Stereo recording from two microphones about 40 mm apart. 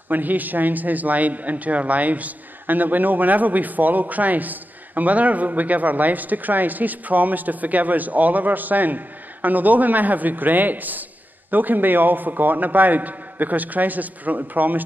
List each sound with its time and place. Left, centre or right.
0.1 s a man's voice: right